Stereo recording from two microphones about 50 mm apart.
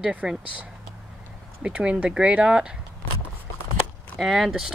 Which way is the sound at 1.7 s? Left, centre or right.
Right.